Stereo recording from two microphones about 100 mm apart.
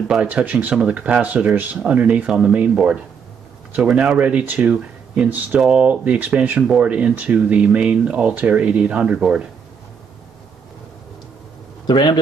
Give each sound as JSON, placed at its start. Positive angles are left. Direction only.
{"t": 0.1, "sound": "speech", "side_deg": -10}
{"t": 11.8, "sound": "a man's voice", "side_deg": 50}